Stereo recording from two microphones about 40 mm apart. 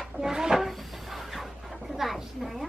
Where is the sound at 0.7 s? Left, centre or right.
Centre.